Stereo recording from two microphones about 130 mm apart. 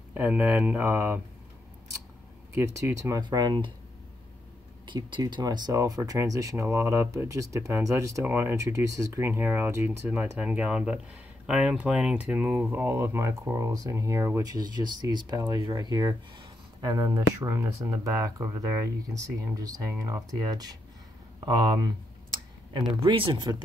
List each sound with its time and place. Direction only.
0.1 s speech: 15° right (ahead or behind)
2.5 s speech: 25° right (ahead or behind)
4.8 s speech: 35° right (ahead or behind)
21.4 s a sound: 30° right (ahead or behind)
23.0 s speech: 40° right (ahead or behind)